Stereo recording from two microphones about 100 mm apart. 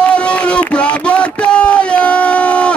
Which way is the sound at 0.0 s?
10° left (ahead or behind).